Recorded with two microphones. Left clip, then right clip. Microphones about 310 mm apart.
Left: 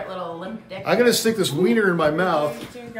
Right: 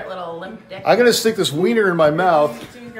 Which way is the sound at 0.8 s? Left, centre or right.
Centre.